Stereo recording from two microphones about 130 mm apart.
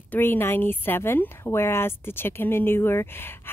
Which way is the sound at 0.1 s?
15° left (ahead or behind).